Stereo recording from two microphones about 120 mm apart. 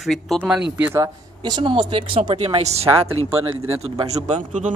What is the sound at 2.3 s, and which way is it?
A woman's voice, 60° right (ahead or behind).